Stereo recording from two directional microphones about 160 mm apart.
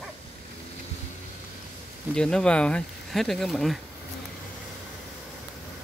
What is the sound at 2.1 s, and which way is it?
Speech, 5° left (ahead or behind).